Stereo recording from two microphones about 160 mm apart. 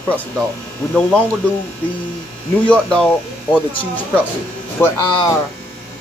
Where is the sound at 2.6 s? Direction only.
5° left (ahead or behind).